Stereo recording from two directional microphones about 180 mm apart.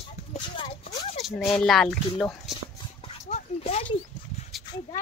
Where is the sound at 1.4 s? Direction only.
Centre (ahead or behind).